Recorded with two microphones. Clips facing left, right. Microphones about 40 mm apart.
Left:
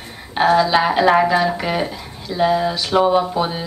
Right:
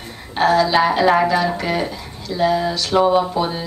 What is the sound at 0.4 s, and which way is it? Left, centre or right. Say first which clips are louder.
Speech: even; centre.